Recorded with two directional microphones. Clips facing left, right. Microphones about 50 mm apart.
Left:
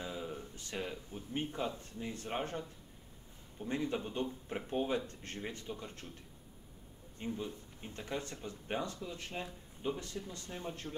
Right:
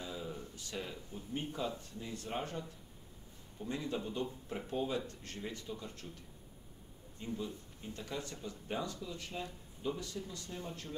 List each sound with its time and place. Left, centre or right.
0.0 s speech: left
3.6 s speech: left
7.2 s speech: left